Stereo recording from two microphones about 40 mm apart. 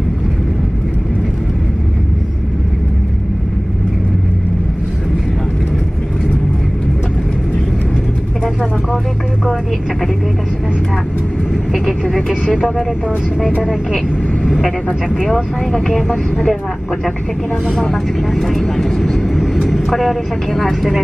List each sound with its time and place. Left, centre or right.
11.7 s vehicle: centre
15.3 s speech: centre
17.9 s speech: centre